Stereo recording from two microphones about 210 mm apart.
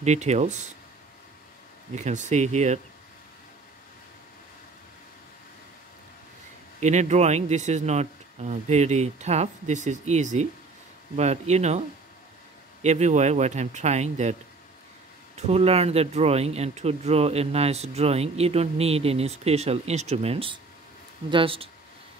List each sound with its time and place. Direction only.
0.0 s speech: 35° right (ahead or behind)
2.0 s speech: 35° right (ahead or behind)
6.8 s speech: 35° right (ahead or behind)
12.8 s speech: 35° right (ahead or behind)
15.3 s speech: 30° right (ahead or behind)